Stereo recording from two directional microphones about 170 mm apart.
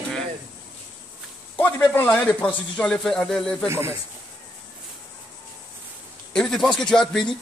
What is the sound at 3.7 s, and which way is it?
Speech, 15° right (ahead or behind).